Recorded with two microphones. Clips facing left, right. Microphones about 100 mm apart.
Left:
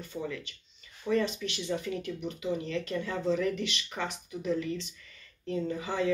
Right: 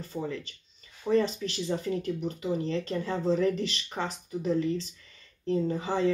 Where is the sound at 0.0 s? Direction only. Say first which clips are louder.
Right 2 dB; 35° right (ahead or behind).